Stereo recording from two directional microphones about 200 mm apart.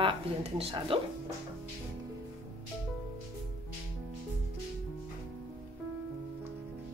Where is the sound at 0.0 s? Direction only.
30° right (ahead or behind).